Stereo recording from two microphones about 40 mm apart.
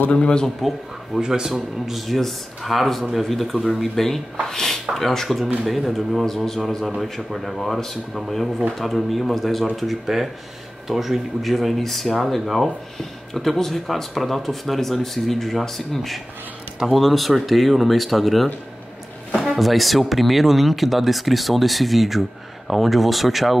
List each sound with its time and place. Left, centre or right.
0.1 s a man's voice: left
0.6 s speech: centre
1.9 s speech: centre
6.2 s speech: centre